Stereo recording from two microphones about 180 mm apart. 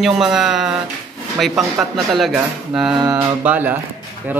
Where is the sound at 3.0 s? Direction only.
20° right (ahead or behind).